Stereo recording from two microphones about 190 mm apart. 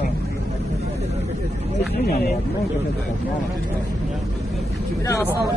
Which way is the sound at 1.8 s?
55° left (ahead or behind).